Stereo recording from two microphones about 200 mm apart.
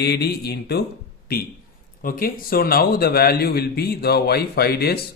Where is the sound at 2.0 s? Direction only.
45° left (ahead or behind).